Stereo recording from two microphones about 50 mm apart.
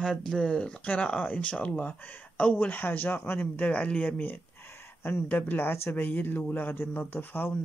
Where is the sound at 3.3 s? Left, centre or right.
Left.